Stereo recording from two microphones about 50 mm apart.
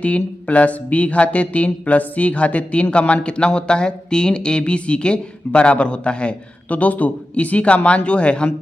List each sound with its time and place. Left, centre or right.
0.0 s speech: left